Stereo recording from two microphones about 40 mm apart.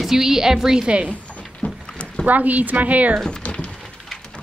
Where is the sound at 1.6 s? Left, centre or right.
Left.